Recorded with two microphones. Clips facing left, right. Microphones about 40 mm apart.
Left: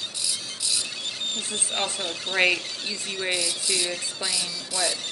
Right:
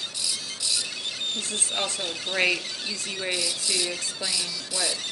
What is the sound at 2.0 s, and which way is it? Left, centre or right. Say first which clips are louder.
Speech: left 1 dB; centre.